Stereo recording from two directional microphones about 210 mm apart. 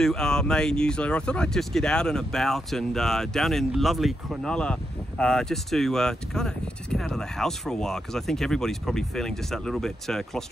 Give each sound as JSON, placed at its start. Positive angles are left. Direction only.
{"t": 0.0, "sound": "speech", "side_deg": 5}